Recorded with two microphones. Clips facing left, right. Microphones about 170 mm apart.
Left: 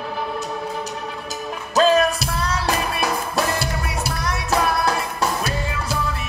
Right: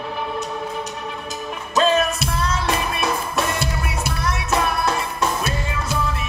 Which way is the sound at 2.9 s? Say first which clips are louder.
Even; 35° left (ahead or behind).